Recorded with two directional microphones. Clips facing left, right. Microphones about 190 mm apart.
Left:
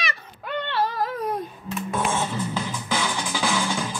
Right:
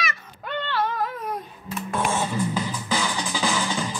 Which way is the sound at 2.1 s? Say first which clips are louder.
Right 1 dB; 10° right (ahead or behind).